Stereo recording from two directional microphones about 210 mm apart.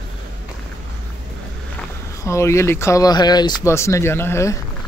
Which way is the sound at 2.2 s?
15° left (ahead or behind).